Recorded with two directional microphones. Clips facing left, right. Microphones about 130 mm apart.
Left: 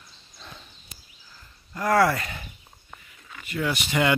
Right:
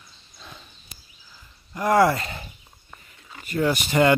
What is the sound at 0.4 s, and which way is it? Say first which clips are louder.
Horse: even; 5° right (ahead or behind).